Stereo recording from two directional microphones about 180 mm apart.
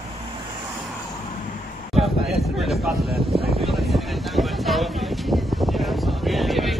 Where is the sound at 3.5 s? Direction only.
Centre (ahead or behind).